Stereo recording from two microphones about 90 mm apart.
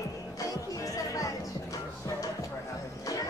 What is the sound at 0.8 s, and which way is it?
Speech, 40° left (ahead or behind).